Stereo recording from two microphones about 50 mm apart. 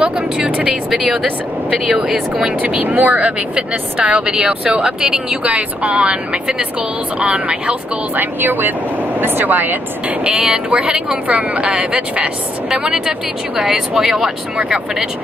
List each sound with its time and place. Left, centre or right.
0.0 s speech: right
0.8 s speech: centre
2.3 s speech: right; by 5.4 s centre
5.4 s speech: right
8.2 s speech: right
10.2 s speech: centre
12.8 s speech: centre